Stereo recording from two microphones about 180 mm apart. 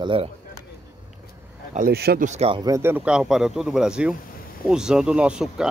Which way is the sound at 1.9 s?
60° right (ahead or behind).